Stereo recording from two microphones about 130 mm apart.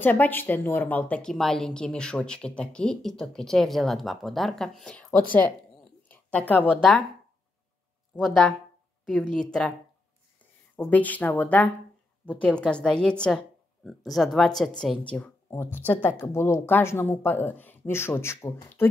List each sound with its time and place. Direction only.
0.0 s a woman's voice: 15° left (ahead or behind)
6.0 s a sound: 15° left (ahead or behind)
6.8 s speech: centre (ahead or behind)
8.2 s speech: centre (ahead or behind)
10.8 s a woman's voice: 10° left (ahead or behind)